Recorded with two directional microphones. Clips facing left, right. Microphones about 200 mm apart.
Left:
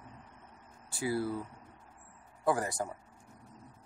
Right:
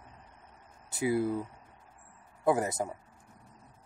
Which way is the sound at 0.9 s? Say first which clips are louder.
Right 4 dB; 20° right (ahead or behind).